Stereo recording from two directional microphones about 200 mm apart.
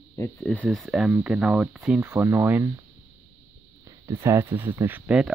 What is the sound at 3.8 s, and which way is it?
Speech, 15° right (ahead or behind).